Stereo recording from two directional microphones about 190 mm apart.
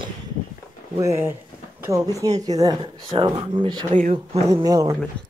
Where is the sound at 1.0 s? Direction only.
15° right (ahead or behind).